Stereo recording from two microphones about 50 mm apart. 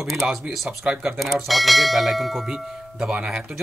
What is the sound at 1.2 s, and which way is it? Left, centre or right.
Speech, centre.